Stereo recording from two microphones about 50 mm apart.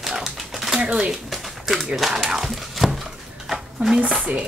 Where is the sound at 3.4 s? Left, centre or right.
Centre.